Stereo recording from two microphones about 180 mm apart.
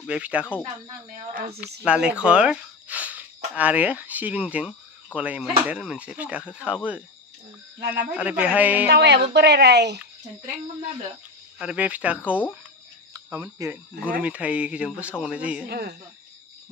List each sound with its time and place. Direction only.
0.0 s speech: 5° right (ahead or behind)
1.9 s a sound: 5° right (ahead or behind)
3.5 s speech: 10° right (ahead or behind)
8.8 s speech: 70° right (ahead or behind)
11.5 s speech: 5° right (ahead or behind)
15.7 s speech: 65° right (ahead or behind)